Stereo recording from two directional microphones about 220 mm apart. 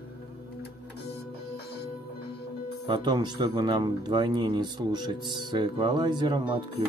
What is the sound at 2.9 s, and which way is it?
Speech, 20° right (ahead or behind).